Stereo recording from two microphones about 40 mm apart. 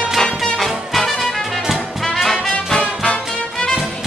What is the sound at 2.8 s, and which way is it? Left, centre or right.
Music, left.